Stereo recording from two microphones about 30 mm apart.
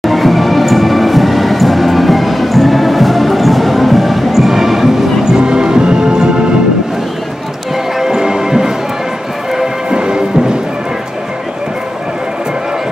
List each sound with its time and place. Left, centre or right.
0.0 s music: centre
5.2 s music: right
8.0 s music: centre
9.8 s music: right